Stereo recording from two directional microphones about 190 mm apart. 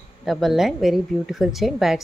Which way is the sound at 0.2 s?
Centre (ahead or behind).